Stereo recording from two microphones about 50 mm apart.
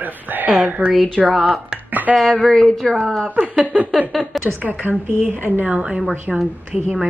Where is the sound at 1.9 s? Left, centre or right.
Right.